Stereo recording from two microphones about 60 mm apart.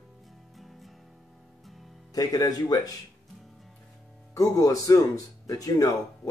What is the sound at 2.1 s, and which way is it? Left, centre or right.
Speech, left.